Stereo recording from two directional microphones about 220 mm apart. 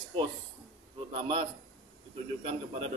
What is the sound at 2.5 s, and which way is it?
Speech, 25° right (ahead or behind).